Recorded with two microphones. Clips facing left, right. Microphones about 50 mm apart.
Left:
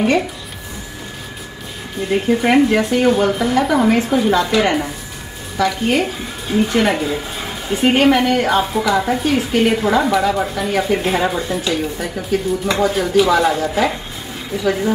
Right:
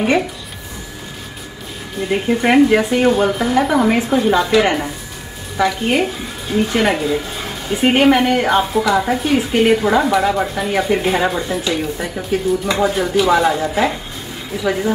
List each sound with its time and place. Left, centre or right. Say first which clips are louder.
2.0 s a woman's voice: left 1 dB; centre
5.6 s speech: right 1 dB; right
6.0 s speech: even; centre
7.8 s a woman's voice: right 1 dB; centre